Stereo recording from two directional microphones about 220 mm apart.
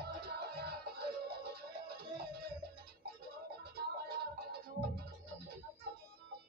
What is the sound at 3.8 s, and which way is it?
Music, 45° right (ahead or behind).